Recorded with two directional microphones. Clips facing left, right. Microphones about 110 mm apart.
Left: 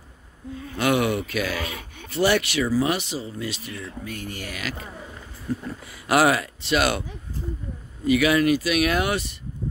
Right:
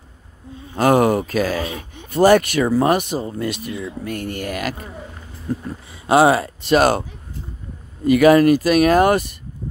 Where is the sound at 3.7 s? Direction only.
15° right (ahead or behind).